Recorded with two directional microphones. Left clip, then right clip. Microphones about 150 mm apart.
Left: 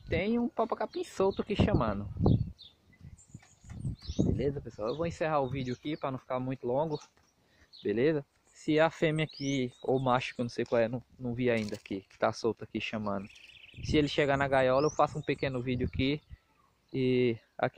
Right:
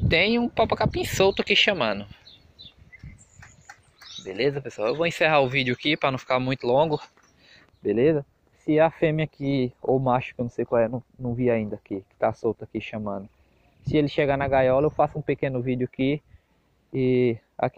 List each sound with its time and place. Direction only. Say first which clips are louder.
0.1 s speech: right 10 dB; 25° left (ahead or behind)
4.4 s speech: right 9 dB; 15° left (ahead or behind)
5.5 s speech: right 14 dB; centre (ahead or behind)
7.8 s speech: right 8 dB; 20° left (ahead or behind)
9.9 s speech: right 4 dB; 35° left (ahead or behind)